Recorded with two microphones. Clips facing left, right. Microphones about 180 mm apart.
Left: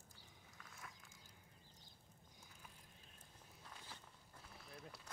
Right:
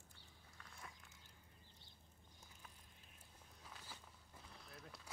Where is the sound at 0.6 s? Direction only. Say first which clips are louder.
Even; 10° left (ahead or behind).